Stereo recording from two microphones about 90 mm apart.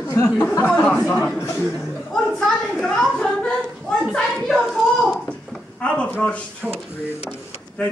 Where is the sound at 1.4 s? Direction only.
30° left (ahead or behind).